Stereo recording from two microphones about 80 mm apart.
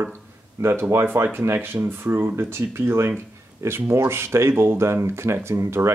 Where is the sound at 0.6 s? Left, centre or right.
Right.